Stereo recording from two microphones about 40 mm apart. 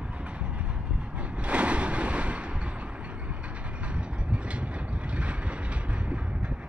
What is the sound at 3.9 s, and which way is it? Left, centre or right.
Vehicle, right.